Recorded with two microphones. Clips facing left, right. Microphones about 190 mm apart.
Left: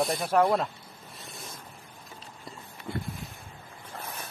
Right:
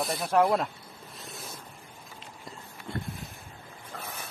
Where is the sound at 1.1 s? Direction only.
Centre (ahead or behind).